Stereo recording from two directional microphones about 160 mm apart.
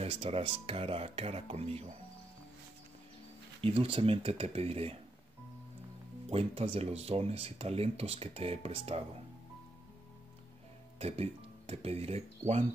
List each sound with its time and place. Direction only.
0.0 s speech: 35° right (ahead or behind)
3.6 s speech: 35° right (ahead or behind)
6.2 s speech: 40° right (ahead or behind)
11.0 s speech: 40° right (ahead or behind)